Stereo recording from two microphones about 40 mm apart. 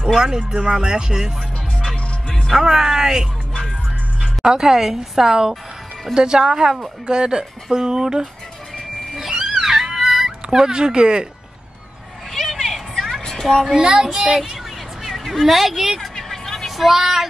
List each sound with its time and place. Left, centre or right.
0.2 s a woman's voice: centre
2.2 s music: centre
2.6 s a woman's voice: centre
4.5 s a woman's voice: centre
9.1 s cat: centre
12.3 s a sound: centre
13.7 s speech: centre
14.1 s a woman's voice: centre
15.0 s a sound: centre
15.4 s speech: centre
16.2 s a sound: centre